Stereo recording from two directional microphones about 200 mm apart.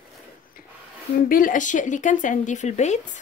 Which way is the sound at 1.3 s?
45° left (ahead or behind).